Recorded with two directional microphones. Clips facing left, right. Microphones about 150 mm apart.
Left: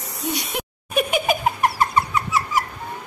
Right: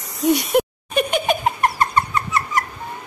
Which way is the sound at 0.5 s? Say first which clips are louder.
Right 12 dB; 50° right (ahead or behind).